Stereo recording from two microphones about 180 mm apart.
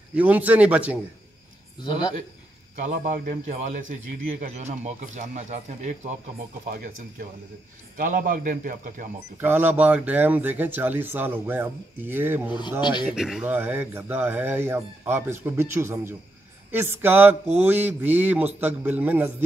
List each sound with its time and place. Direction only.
0.1 s speech: 10° right (ahead or behind)
2.7 s a man's voice: 45° right (ahead or behind)
8.0 s a man's voice: 50° right (ahead or behind)
9.4 s speech: 10° right (ahead or behind)
12.4 s speech: 25° left (ahead or behind)
13.0 s speech: 5° right (ahead or behind)